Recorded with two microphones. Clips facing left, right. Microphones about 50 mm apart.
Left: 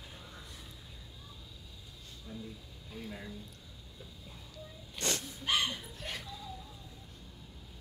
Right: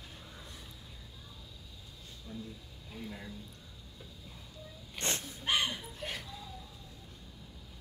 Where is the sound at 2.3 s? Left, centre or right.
Centre.